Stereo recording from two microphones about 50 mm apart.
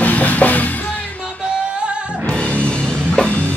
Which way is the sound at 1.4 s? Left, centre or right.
Centre.